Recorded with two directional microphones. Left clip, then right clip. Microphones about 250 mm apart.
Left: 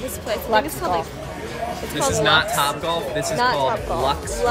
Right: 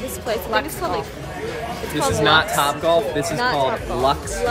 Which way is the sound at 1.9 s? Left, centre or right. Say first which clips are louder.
Right 1 dB; centre.